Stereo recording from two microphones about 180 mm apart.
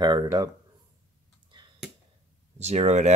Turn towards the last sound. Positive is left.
turn(degrees=-40)  # may be behind; listen again after turning